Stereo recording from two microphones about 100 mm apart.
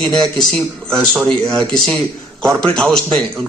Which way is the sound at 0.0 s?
5° left (ahead or behind).